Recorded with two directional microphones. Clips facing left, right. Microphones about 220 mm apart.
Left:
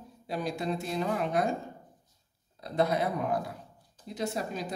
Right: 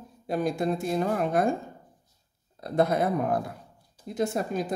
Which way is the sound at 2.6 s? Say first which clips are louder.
Right 4 dB; 50° right (ahead or behind).